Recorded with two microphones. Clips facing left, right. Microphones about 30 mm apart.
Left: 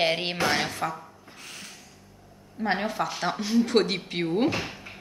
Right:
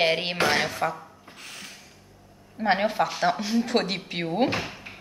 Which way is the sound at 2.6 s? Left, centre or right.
Right.